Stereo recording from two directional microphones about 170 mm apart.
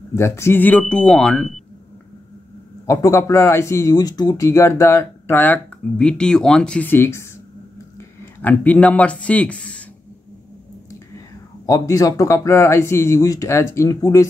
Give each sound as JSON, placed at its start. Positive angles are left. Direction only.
{"t": 0.1, "sound": "speech", "side_deg": 15}
{"t": 2.9, "sound": "speech", "side_deg": 15}
{"t": 11.6, "sound": "speech", "side_deg": 20}